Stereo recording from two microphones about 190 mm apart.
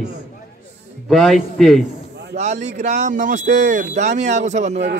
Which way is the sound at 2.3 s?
35° right (ahead or behind).